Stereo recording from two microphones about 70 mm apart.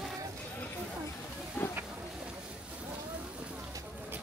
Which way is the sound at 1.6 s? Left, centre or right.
Left.